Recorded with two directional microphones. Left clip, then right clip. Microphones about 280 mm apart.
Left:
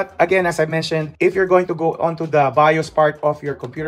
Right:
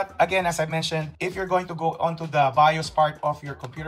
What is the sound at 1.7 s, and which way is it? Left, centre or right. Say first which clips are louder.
Speech: left 6 dB; left.